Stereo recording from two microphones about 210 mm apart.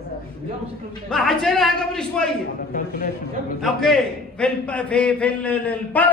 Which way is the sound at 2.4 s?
40° left (ahead or behind).